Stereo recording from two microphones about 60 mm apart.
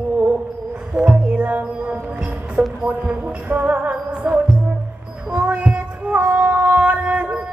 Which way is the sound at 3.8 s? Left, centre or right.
Centre.